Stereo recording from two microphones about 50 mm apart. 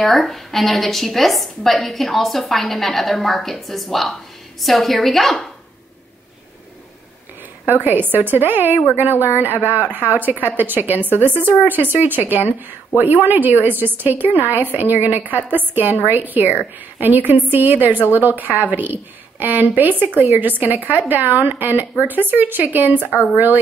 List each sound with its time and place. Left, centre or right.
0.0 s a woman's voice: centre
7.6 s a woman's voice: right